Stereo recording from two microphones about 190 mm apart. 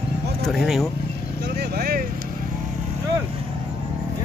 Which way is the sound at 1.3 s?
60° right (ahead or behind).